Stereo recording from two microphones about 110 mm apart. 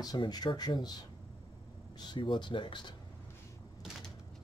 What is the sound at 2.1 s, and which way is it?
Speech, 45° left (ahead or behind).